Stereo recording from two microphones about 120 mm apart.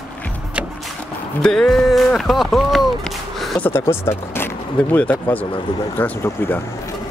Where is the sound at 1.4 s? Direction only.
5° left (ahead or behind).